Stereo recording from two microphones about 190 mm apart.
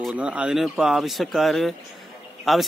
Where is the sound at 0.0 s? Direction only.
5° right (ahead or behind).